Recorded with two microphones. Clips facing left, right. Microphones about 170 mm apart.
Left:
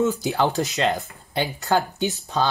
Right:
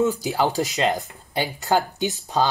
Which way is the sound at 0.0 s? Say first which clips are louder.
Even; 10° right (ahead or behind).